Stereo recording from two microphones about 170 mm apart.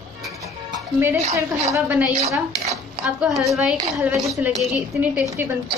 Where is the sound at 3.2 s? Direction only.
Centre (ahead or behind).